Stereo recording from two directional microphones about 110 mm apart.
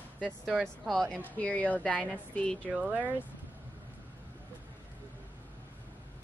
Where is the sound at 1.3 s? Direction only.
15° left (ahead or behind).